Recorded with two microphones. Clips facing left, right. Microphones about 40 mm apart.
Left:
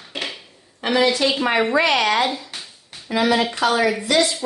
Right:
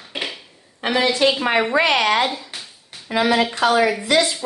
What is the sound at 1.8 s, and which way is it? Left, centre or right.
Speech, right.